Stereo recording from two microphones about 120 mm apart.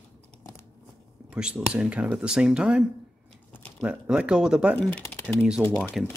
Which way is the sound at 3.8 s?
10° right (ahead or behind).